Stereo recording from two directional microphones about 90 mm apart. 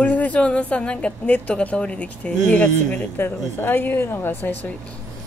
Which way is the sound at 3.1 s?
25° left (ahead or behind).